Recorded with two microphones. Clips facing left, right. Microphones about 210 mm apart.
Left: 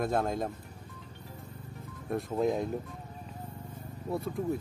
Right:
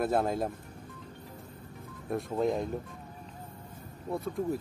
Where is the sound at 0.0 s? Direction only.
5° right (ahead or behind).